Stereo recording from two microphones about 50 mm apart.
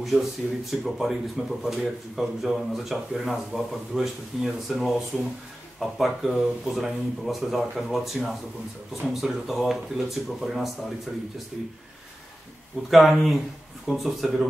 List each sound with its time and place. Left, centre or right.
0.1 s speech: centre
0.7 s speech: centre
12.9 s speech: centre